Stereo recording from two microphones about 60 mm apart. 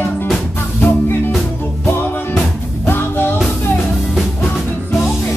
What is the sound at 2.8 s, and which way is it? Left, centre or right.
Music, left.